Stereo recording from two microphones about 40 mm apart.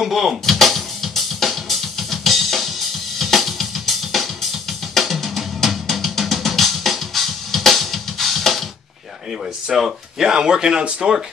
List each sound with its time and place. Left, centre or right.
0.0 s music: centre
3.2 s drum kit: centre
4.9 s music: centre
9.7 s speech: centre